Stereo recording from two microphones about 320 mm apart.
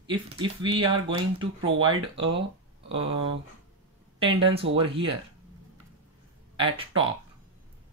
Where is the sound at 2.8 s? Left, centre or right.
Centre.